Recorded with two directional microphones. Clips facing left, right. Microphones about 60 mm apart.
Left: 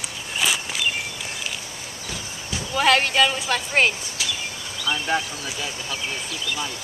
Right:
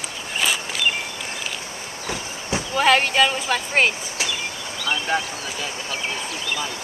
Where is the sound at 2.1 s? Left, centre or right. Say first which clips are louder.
Right 6 dB; right.